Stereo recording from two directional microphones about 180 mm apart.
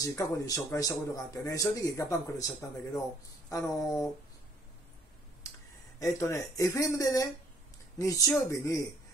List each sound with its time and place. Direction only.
0.0 s a man's voice: 20° left (ahead or behind)
5.4 s a sound: 20° left (ahead or behind)
5.9 s speech: 15° left (ahead or behind)
8.5 s speech: 15° left (ahead or behind)